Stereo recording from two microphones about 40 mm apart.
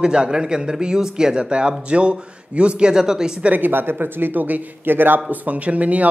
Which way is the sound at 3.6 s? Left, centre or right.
Right.